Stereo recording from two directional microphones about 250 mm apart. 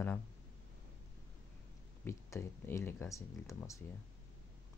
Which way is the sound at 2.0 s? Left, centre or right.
Centre.